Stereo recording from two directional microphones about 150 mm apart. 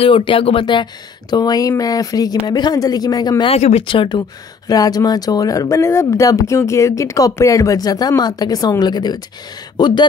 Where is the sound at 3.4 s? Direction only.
45° left (ahead or behind).